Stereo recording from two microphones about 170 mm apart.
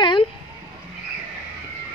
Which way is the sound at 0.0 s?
30° left (ahead or behind).